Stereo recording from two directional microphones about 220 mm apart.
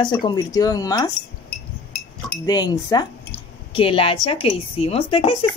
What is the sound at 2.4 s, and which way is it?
Speech, 20° left (ahead or behind).